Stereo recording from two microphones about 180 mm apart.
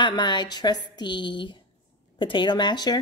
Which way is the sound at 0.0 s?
25° left (ahead or behind).